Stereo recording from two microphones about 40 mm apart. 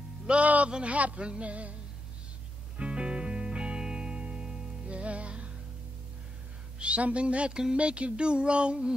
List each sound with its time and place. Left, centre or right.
0.3 s a man's voice: right
0.8 s music: right
2.8 s music: right
4.8 s music: right
6.8 s a woman's voice: right